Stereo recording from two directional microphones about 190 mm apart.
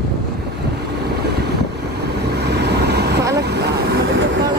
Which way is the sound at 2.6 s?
60° right (ahead or behind).